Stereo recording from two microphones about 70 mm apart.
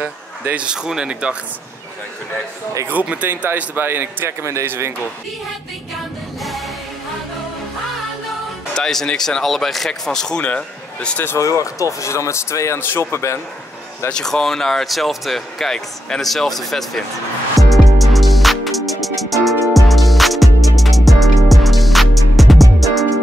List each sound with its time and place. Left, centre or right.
0.0 s speech: centre
2.9 s a man's voice: right
8.7 s speech: centre
11.3 s a man's voice: left
14.1 s speech: centre
17.6 s music: centre